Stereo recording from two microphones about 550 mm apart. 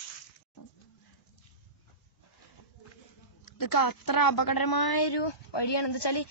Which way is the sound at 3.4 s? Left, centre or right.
Left.